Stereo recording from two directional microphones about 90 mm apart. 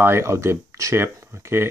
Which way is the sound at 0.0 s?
30° right (ahead or behind).